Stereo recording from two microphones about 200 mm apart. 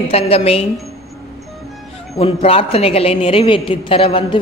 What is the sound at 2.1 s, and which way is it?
A woman's voice, 30° left (ahead or behind).